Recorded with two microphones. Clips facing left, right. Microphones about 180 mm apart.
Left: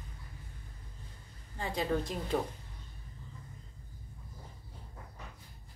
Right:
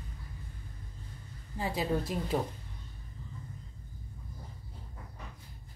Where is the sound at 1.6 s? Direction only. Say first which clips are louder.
Right 1 dB; 5° right (ahead or behind).